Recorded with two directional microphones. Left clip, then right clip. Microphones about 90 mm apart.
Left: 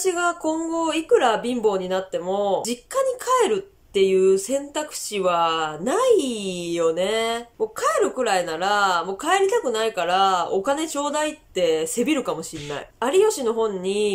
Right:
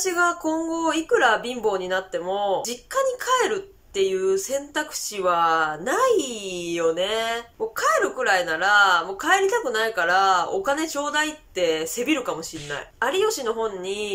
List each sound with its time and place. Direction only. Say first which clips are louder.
0.0 s a woman's voice: even; 35° left (ahead or behind)